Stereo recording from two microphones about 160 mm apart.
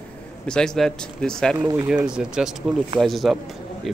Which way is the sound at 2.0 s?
5° right (ahead or behind).